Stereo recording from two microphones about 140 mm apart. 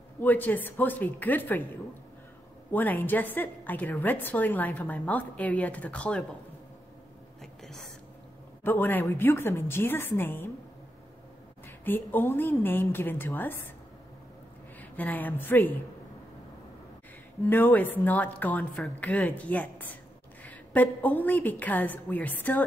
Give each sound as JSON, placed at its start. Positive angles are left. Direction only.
{"t": 0.2, "sound": "a woman's voice", "side_deg": 15}
{"t": 2.7, "sound": "a woman's voice", "side_deg": 15}
{"t": 8.6, "sound": "a woman's voice", "side_deg": 15}
{"t": 11.6, "sound": "a woman's voice", "side_deg": 15}
{"t": 14.8, "sound": "a woman's voice", "side_deg": 10}
{"t": 17.5, "sound": "a woman's voice", "side_deg": 15}